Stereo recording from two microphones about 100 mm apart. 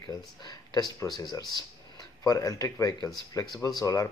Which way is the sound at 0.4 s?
45° left (ahead or behind).